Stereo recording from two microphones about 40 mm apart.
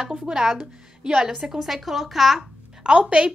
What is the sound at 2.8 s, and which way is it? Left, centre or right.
Speech, right.